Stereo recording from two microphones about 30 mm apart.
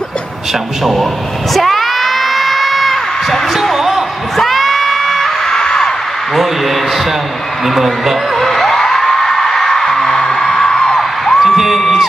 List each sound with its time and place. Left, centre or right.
1.5 s crowd: centre
3.7 s a sound: centre
4.4 s crowd: centre
5.5 s music: left
6.3 s a sound: centre
7.6 s a woman's voice: centre
8.4 s music: centre; by 11.0 s left
11.0 s music: centre
11.4 s music: centre